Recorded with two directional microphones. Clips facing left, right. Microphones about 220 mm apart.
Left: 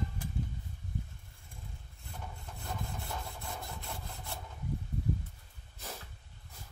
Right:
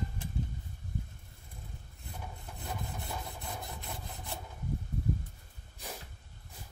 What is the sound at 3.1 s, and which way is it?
Rub, 15° right (ahead or behind).